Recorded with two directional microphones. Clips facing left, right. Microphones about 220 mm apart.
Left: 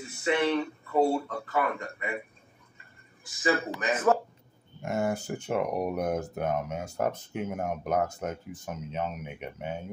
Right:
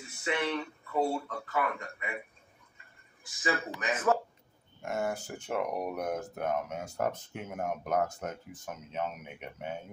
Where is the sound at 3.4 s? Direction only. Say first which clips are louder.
Left 5 dB; 35° left (ahead or behind).